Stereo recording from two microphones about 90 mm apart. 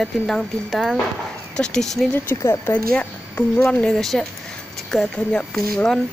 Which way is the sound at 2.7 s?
15° left (ahead or behind).